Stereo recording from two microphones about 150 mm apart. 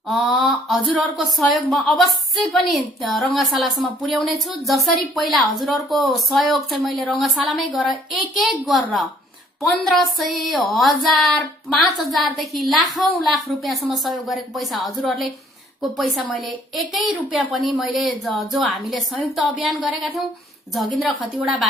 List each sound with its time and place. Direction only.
0.1 s speech: centre (ahead or behind)